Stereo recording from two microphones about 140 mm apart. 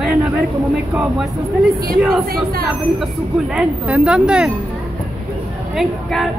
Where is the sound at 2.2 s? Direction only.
90° right.